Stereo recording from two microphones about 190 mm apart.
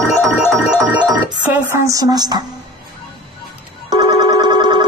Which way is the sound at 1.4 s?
10° right (ahead or behind).